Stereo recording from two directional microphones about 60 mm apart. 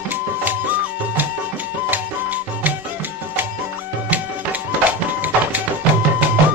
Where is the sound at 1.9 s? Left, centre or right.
Right.